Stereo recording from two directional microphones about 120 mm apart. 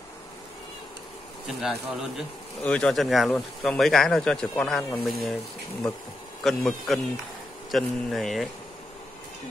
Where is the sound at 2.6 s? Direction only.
10° left (ahead or behind).